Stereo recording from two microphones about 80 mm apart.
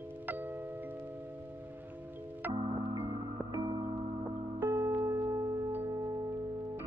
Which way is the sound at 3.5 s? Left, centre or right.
Right.